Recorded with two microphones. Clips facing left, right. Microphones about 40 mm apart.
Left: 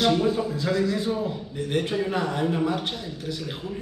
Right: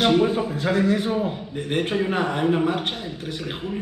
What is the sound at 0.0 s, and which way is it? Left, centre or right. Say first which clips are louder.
A man's voice: right 3 dB; right.